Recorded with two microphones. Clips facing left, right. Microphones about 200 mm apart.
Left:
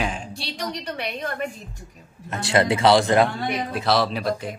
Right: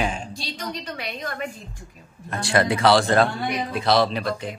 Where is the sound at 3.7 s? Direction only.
5° left (ahead or behind).